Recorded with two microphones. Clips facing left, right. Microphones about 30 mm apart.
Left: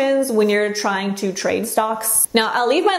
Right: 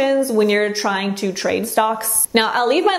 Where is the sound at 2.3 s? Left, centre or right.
Centre.